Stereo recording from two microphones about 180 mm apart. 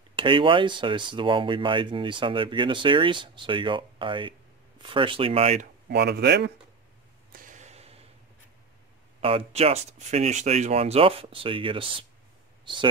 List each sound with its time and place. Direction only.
0.1 s speech: 30° right (ahead or behind)
5.9 s speech: 65° right (ahead or behind)
7.3 s a sound: 45° right (ahead or behind)
9.2 s speech: 30° right (ahead or behind)